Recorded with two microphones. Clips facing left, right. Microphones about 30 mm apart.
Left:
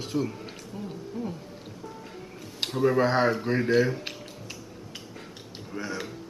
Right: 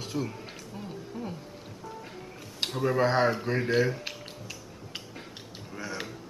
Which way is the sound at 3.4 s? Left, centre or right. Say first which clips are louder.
Left 3 dB; centre.